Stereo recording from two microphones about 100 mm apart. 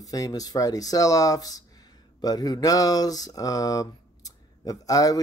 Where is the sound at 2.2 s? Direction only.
40° left (ahead or behind).